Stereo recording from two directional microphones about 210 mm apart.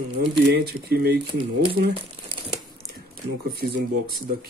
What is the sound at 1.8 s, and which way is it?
Crumpling, 50° right (ahead or behind).